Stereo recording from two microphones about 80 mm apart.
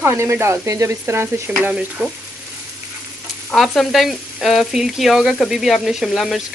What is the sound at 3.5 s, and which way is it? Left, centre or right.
Speech, centre.